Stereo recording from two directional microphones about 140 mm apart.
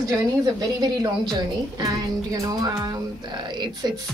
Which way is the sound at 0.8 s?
30° right (ahead or behind).